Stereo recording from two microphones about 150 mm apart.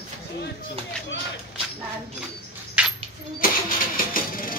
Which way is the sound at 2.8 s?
5° right (ahead or behind).